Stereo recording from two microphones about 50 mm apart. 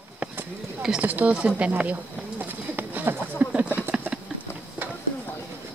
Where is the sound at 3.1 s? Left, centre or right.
Right.